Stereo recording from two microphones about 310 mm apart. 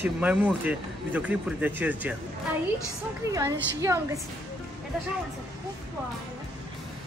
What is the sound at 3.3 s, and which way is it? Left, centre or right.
Speech, centre.